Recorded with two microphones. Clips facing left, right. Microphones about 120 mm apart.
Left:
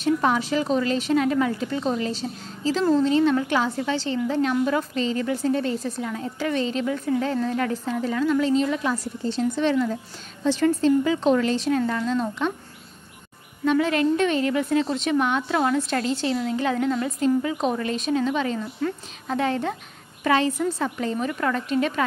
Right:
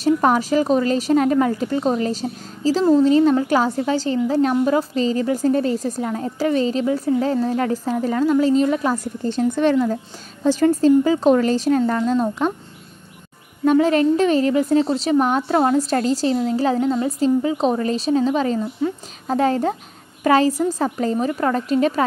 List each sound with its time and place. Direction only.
0.0 s a woman's voice: 45° right (ahead or behind)
13.7 s a woman's voice: 35° right (ahead or behind)